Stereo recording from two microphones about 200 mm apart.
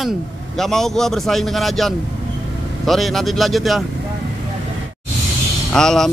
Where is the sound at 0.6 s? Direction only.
Centre (ahead or behind).